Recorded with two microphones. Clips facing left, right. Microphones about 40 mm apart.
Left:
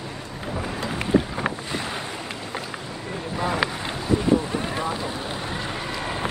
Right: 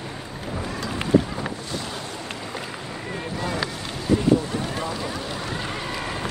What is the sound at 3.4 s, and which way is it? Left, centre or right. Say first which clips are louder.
Boat: left 4 dB; left.